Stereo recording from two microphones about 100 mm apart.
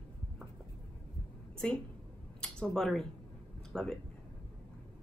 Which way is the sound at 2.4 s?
5° left (ahead or behind).